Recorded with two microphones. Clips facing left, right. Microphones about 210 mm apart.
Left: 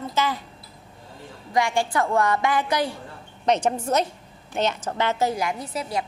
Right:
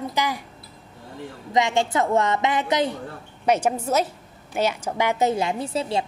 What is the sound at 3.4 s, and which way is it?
A woman's voice, 10° right (ahead or behind).